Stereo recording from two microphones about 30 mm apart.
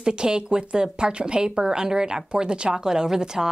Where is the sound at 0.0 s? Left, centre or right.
Right.